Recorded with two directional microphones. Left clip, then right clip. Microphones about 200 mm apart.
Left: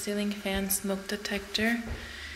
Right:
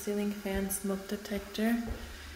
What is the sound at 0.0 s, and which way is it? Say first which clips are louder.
A woman's voice: left 2 dB; 5° right (ahead or behind).